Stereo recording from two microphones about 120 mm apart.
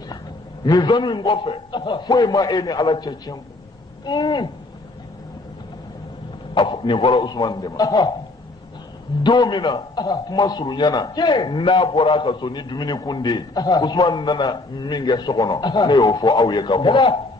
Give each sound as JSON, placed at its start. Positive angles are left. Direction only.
{"t": 0.7, "sound": "a man's voice", "side_deg": 35}
{"t": 6.5, "sound": "a man's voice", "side_deg": 45}
{"t": 9.2, "sound": "a man's voice", "side_deg": 40}